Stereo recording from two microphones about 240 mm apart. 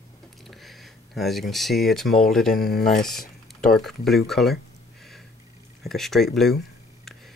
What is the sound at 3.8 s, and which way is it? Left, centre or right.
Speech, centre.